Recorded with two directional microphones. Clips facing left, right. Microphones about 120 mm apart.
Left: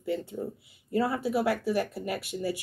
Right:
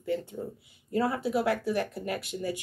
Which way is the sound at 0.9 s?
Centre (ahead or behind).